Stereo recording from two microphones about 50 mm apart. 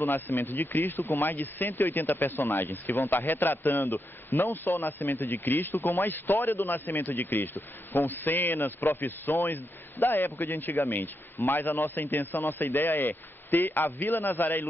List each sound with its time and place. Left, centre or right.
0.0 s a man's voice: left